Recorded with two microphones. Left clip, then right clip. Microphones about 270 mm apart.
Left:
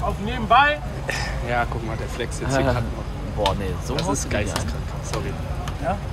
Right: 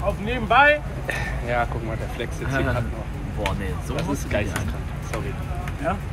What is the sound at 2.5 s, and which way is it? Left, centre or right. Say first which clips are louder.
Speech: left 4 dB; left.